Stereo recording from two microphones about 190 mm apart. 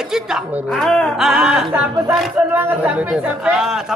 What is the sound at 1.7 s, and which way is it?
A man's voice, 15° right (ahead or behind).